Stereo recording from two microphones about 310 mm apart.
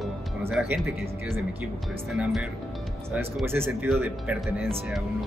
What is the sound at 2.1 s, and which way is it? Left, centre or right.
Speech, centre.